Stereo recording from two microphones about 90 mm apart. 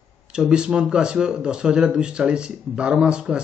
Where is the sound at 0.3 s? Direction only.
10° right (ahead or behind).